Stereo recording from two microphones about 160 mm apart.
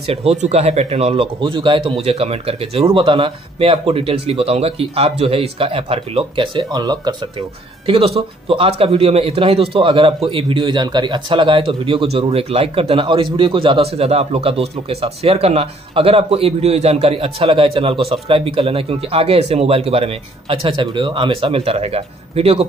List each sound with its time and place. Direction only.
0.1 s a man's voice: 40° right (ahead or behind)
7.8 s a man's voice: 35° right (ahead or behind)